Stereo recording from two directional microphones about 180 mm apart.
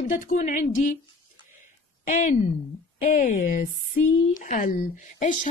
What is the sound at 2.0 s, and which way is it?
A woman's voice, 45° left (ahead or behind).